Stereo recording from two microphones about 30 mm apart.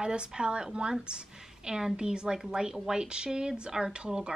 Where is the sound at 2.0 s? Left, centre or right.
Right.